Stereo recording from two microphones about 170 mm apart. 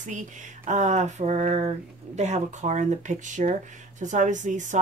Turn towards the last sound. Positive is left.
turn(degrees=-45)  # may be behind; listen again after turning